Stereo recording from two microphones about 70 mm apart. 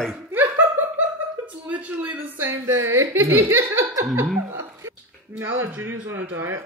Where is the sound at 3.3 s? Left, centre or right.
Right.